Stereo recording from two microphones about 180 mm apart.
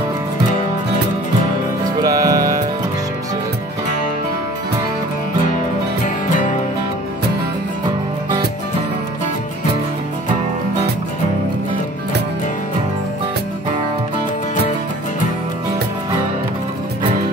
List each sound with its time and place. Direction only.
2.0 s music: 20° right (ahead or behind)
6.0 s music: 45° left (ahead or behind)